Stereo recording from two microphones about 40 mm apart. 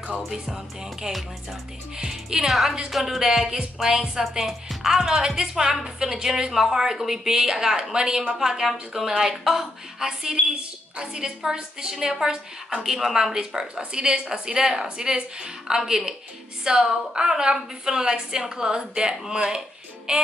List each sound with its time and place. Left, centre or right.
1.1 s a woman's voice: centre
3.3 s a woman's voice: centre
8.4 s a woman's voice: centre
15.8 s a woman's voice: centre